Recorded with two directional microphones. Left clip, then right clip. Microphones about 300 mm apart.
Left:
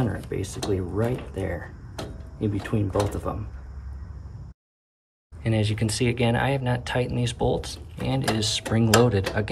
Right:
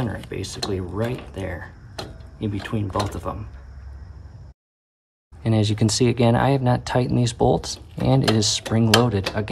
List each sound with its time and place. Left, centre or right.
0.0 s speech: centre
5.4 s speech: centre
7.3 s speech: right
8.0 s speech: centre